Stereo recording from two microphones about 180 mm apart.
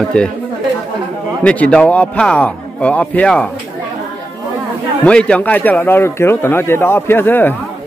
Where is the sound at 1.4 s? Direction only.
5° left (ahead or behind).